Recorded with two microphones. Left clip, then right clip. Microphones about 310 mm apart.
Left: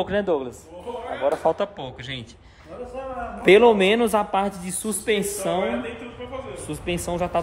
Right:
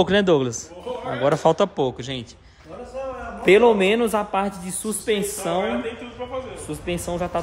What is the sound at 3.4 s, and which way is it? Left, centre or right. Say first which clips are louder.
Speech: even; centre.